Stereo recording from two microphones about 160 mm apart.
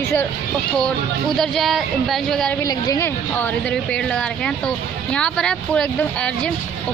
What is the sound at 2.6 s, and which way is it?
Speech, 20° left (ahead or behind).